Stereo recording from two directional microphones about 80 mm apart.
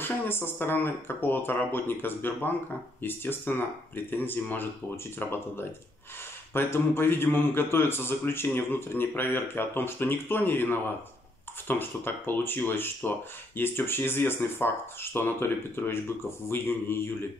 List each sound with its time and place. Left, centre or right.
0.0 s a man's voice: left